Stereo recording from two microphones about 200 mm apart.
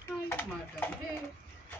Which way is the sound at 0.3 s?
10° left (ahead or behind).